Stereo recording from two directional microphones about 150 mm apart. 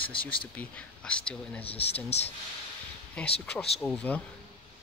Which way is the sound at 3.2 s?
5° left (ahead or behind).